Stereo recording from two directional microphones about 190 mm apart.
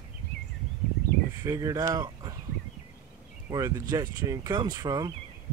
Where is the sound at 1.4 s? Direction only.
15° right (ahead or behind).